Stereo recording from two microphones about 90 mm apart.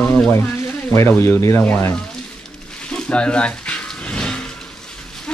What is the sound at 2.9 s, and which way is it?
Dog, 10° left (ahead or behind).